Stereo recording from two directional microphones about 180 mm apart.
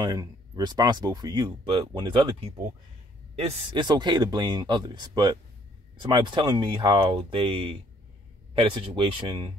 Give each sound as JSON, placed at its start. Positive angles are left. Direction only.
{"t": 0.0, "sound": "speech", "side_deg": -20}
{"t": 3.8, "sound": "speech", "side_deg": -25}